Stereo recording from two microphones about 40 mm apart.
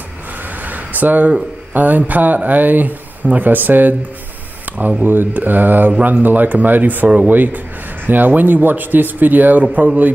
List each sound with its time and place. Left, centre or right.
0.7 s a sound: right
1.7 s speech: right
5.0 s speech: right